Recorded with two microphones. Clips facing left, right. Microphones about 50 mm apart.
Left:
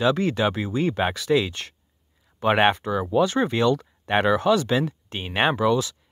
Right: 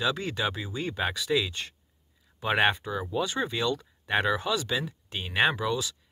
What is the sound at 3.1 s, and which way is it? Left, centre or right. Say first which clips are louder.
Speech: left 9 dB; left.